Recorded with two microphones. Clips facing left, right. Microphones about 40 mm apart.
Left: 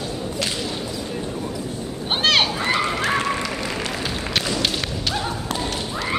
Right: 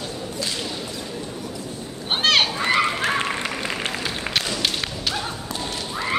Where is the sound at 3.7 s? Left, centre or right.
Right.